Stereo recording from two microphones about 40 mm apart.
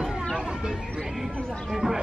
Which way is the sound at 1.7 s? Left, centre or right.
Centre.